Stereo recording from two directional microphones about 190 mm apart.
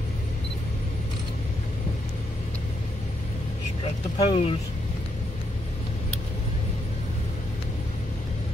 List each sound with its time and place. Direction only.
4.2 s speech: 30° left (ahead or behind)